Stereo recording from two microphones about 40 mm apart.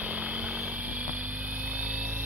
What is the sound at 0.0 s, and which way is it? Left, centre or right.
Vehicle, right.